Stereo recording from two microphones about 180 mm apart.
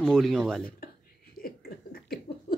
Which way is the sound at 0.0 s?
Centre (ahead or behind).